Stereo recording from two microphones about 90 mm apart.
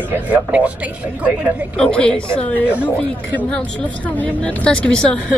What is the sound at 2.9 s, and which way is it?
A woman's voice, 15° left (ahead or behind).